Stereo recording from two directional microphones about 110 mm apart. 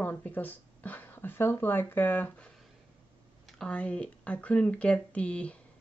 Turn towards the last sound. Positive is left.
turn(degrees=10)  # may be behind; listen again after turning